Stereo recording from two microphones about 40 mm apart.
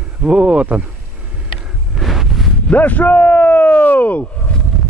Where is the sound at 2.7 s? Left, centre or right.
Left.